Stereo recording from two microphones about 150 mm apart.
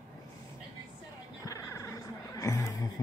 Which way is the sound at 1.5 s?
20° left (ahead or behind).